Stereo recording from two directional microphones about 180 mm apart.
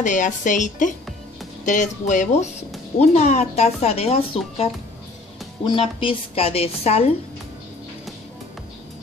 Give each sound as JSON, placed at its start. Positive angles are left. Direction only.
{"t": 0.0, "sound": "a woman's voice", "side_deg": 45}
{"t": 5.7, "sound": "a woman's voice", "side_deg": 30}